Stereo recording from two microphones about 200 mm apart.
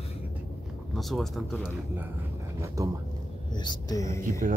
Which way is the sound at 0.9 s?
Centre (ahead or behind).